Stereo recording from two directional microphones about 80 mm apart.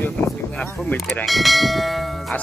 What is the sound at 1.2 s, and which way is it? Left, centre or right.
Church bell, centre.